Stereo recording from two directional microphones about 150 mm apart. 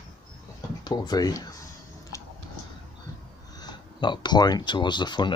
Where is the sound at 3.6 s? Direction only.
30° left (ahead or behind).